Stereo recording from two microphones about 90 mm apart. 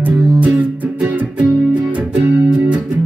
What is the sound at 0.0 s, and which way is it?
Music, 15° right (ahead or behind).